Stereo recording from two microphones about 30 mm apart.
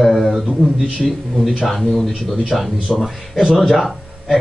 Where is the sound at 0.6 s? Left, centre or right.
Centre.